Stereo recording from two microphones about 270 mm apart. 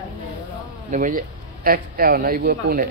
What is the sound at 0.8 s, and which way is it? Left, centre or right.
Speech, right.